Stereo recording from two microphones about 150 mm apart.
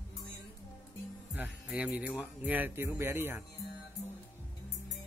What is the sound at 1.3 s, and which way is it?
Speech, 10° right (ahead or behind).